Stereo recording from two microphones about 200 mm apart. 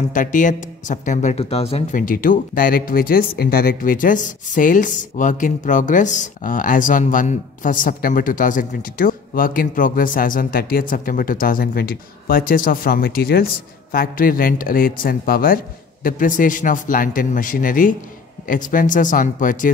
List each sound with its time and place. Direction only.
0.1 s speech: 40° left (ahead or behind)